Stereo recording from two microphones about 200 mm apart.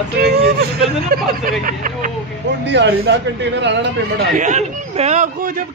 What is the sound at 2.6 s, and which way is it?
Speech, 60° right (ahead or behind).